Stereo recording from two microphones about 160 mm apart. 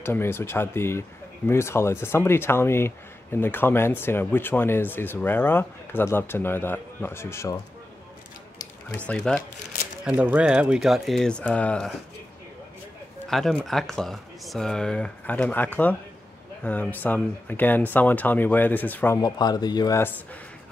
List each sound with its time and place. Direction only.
0.0 s speech: 15° left (ahead or behind)
8.9 s speech: 5° left (ahead or behind)
10.0 s speech: 10° right (ahead or behind); by 11.9 s 5° left (ahead or behind)
13.3 s speech: centre (ahead or behind)
19.2 s speech: 25° left (ahead or behind)